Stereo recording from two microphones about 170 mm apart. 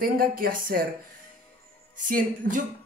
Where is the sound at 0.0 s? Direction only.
60° right (ahead or behind).